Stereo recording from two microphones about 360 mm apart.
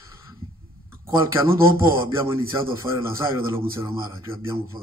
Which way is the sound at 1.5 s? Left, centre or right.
Centre.